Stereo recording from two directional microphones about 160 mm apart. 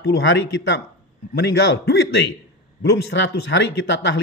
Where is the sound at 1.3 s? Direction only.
90° left.